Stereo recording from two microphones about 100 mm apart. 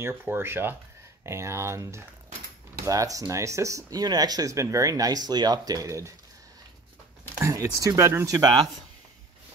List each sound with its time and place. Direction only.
0.1 s speech: 20° right (ahead or behind)
7.3 s speech: 30° right (ahead or behind)
8.4 s speech: 45° right (ahead or behind)